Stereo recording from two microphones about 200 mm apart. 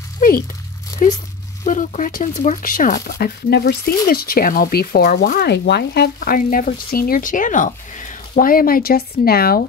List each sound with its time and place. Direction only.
0.2 s speech: 45° left (ahead or behind)